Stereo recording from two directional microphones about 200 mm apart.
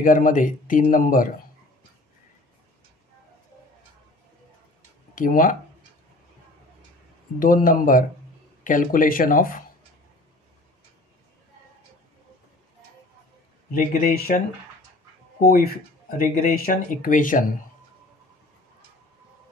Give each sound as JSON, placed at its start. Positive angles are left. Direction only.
{"t": 0.0, "sound": "speech", "side_deg": 40}
{"t": 5.1, "sound": "speech", "side_deg": 45}
{"t": 7.3, "sound": "speech", "side_deg": 45}
{"t": 13.7, "sound": "speech", "side_deg": 45}
{"t": 15.4, "sound": "speech", "side_deg": 50}